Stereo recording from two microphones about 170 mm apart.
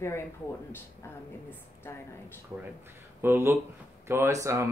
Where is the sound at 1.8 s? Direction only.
15° left (ahead or behind).